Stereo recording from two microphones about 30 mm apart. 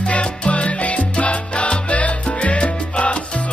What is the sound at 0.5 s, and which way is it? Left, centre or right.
Salsa music, left.